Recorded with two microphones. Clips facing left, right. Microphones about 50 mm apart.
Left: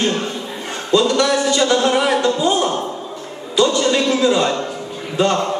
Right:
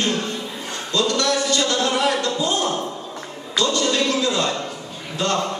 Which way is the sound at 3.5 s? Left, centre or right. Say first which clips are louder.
Left 5 dB; left.